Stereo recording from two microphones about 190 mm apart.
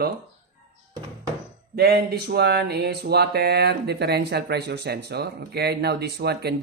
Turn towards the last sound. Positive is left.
turn(degrees=-60)  # may be behind; listen again after turning